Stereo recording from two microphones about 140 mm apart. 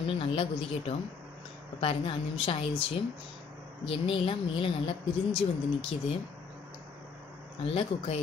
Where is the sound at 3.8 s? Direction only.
40° left (ahead or behind).